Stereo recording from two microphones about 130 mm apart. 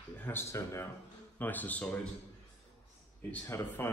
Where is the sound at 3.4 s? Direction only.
20° left (ahead or behind).